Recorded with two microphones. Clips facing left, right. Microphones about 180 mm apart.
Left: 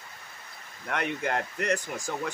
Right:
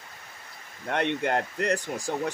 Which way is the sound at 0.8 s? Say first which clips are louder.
Right 4 dB; 30° right (ahead or behind).